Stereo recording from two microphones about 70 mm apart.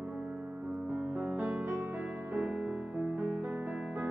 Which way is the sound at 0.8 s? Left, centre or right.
Centre.